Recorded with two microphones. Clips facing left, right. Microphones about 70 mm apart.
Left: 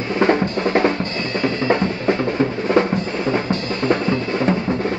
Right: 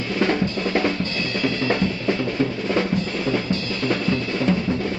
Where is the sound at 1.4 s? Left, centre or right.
Left.